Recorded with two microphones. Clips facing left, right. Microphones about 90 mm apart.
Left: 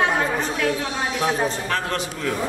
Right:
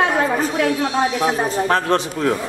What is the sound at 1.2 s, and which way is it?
A man's voice, 35° right (ahead or behind).